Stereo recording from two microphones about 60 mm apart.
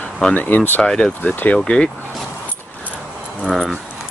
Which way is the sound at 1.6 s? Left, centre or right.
Centre.